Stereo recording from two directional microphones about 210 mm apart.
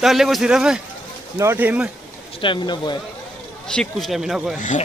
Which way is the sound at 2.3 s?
25° left (ahead or behind).